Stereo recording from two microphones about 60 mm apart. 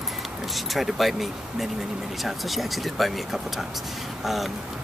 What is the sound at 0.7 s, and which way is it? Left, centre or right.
Speech, centre.